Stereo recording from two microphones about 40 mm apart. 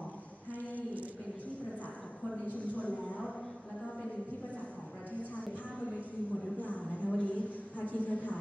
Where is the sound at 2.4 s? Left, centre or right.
Left.